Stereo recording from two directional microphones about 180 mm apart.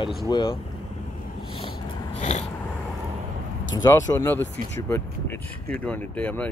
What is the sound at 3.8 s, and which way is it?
Speech, 20° left (ahead or behind).